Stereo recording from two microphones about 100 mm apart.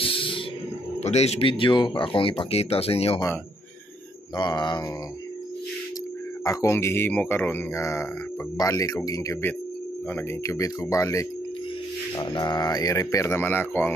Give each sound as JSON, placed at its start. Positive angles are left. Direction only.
{"t": 0.0, "sound": "a sound", "side_deg": 60}
{"t": 1.1, "sound": "a man's voice", "side_deg": 90}
{"t": 1.5, "sound": "speech", "side_deg": 55}
{"t": 4.4, "sound": "mantra", "side_deg": 45}
{"t": 6.4, "sound": "a man's voice", "side_deg": 35}
{"t": 10.4, "sound": "speech", "side_deg": 30}
{"t": 12.2, "sound": "speech", "side_deg": 50}
{"t": 13.3, "sound": "a man's voice", "side_deg": 20}